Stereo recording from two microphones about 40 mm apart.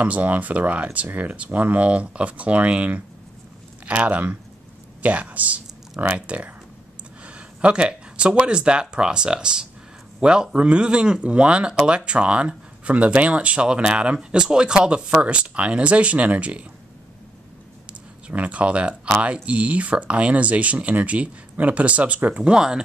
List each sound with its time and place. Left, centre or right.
0.0 s speech: right; by 14.8 s centre
15.0 s speech: right
17.8 s speech: right
22.4 s speech: centre